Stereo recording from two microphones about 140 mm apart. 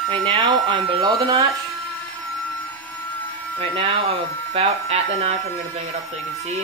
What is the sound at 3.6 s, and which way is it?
Speech, 40° right (ahead or behind).